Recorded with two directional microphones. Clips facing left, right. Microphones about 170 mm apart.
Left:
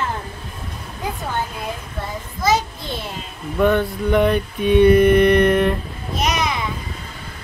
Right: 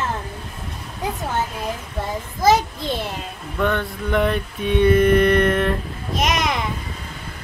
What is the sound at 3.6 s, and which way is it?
Mantra, 5° left (ahead or behind).